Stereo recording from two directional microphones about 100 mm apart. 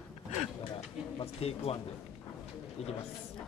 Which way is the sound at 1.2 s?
90° left.